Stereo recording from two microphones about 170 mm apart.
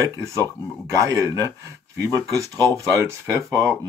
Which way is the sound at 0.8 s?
20° right (ahead or behind).